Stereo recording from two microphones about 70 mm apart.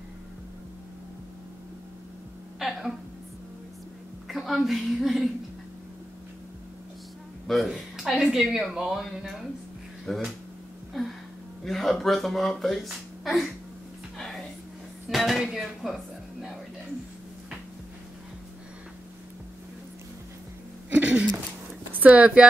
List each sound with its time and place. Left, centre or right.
2.6 s speech: centre
4.3 s speech: centre
7.4 s speech: centre
11.6 s speech: centre
14.1 s music: centre
15.0 s speech: centre
20.9 s a sound: centre
21.9 s speech: right